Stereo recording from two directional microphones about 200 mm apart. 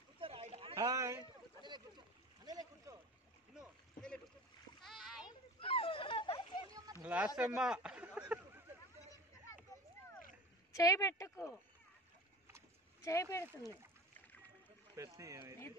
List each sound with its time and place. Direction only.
0.2 s a sound: 30° right (ahead or behind)
2.4 s boat: 20° right (ahead or behind)
3.5 s rowboat: 5° left (ahead or behind)
4.8 s splash: centre (ahead or behind)
5.6 s a sound: 25° left (ahead or behind)
6.7 s a sound: 10° right (ahead or behind)
7.3 s speech: 5° right (ahead or behind)
10.7 s speech: 15° left (ahead or behind)
13.0 s speech: 15° left (ahead or behind)
15.0 s speech: 15° right (ahead or behind)